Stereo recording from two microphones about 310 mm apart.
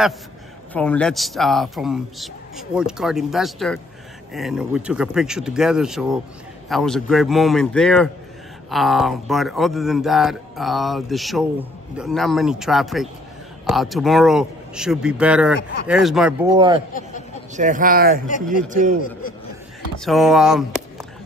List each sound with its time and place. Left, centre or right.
0.7 s a man's voice: centre
17.6 s speech: right
20.1 s speech: centre